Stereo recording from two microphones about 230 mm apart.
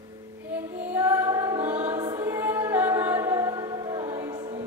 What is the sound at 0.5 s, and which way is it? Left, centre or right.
Choir, centre.